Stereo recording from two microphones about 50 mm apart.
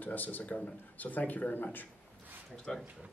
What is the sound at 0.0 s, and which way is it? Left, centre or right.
A woman's voice, left.